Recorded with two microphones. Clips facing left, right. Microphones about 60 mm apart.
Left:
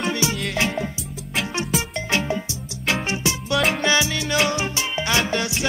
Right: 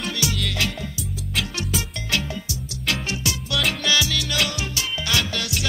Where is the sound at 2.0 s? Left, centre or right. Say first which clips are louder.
Left 3 dB; left.